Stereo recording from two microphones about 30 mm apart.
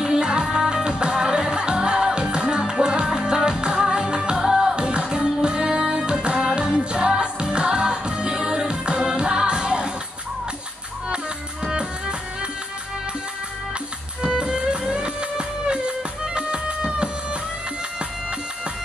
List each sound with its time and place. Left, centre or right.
0.0 s music: right
11.7 s music: right
14.2 s music: right